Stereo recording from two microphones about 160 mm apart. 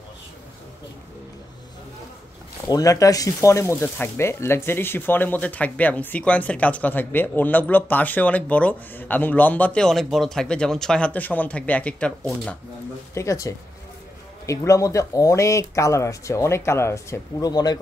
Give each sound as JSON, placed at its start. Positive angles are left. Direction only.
{"t": 2.7, "sound": "speech", "side_deg": 20}
{"t": 13.1, "sound": "speech", "side_deg": 20}